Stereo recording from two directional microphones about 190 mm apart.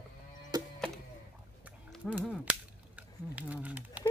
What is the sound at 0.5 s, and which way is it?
Music, 20° right (ahead or behind).